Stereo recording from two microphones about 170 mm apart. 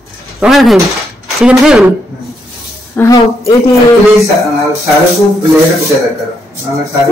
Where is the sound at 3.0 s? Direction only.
20° left (ahead or behind).